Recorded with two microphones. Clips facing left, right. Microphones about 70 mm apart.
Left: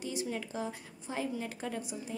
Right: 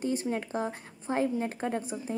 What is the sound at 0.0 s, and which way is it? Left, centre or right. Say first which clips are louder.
Speech: right 6 dB; right.